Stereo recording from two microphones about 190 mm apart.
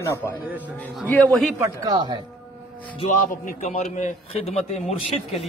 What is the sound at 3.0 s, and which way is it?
A man's voice, 45° left (ahead or behind).